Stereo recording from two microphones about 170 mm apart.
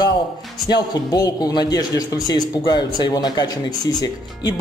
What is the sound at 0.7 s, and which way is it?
A man's voice, 25° left (ahead or behind).